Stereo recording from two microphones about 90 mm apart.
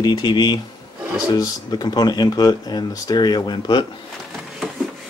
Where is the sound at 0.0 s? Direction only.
50° left (ahead or behind).